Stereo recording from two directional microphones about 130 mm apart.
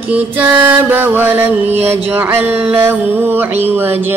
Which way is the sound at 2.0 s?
15° right (ahead or behind).